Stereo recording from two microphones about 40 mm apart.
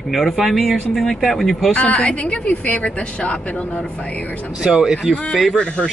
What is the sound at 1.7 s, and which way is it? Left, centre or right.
Speech, left.